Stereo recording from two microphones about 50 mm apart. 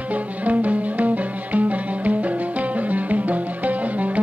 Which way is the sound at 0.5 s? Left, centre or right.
Right.